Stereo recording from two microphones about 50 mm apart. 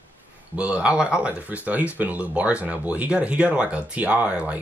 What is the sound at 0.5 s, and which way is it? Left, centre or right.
Speech, right.